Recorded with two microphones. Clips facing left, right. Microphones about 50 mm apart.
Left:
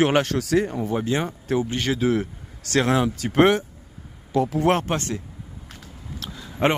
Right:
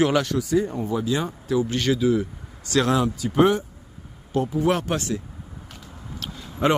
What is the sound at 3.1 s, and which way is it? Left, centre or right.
Speech, left.